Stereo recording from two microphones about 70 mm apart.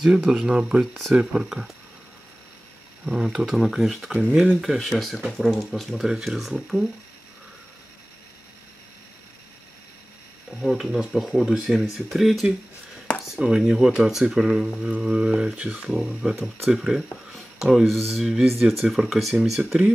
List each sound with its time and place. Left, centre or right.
0.0 s speech: centre
3.2 s speech: centre
10.6 s speech: centre
13.6 s speech: centre
15.9 s speech: centre